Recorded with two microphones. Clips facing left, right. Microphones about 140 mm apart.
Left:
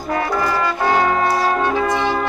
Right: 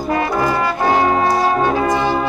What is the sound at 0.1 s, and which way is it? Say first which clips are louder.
Brass instrument: right 2 dB; 20° right (ahead or behind).